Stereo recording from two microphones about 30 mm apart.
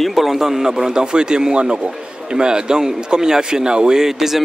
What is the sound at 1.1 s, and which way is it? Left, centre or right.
A man's voice, right.